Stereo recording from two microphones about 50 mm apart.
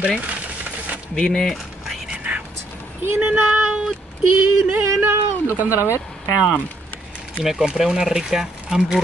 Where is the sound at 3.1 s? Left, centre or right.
Right.